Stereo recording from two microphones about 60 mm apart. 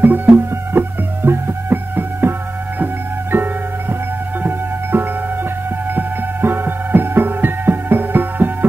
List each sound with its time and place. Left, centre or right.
0.0 s music: right